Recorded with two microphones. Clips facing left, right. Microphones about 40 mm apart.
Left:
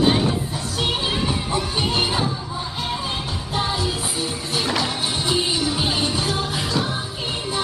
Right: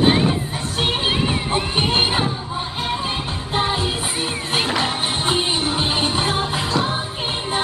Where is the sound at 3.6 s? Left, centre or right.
Right.